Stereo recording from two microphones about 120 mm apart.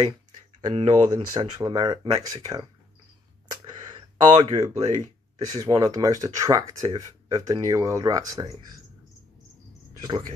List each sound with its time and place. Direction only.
0.8 s speech: 35° right (ahead or behind)
3.7 s a sound: 40° right (ahead or behind)
4.6 s speech: 35° right (ahead or behind)